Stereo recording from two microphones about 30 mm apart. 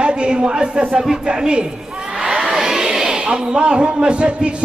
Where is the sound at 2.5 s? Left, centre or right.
Centre.